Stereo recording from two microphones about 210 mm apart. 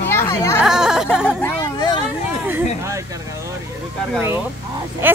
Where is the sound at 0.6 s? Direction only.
5° right (ahead or behind).